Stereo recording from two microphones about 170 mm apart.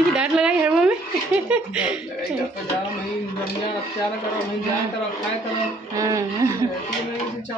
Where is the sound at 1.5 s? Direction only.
5° right (ahead or behind).